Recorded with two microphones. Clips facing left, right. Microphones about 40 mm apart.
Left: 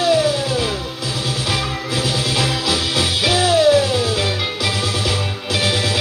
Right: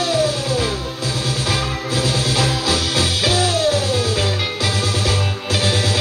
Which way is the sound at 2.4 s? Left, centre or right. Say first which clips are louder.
Even; left.